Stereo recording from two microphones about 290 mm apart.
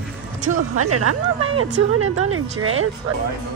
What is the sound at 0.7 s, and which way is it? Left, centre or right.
A woman's voice, right.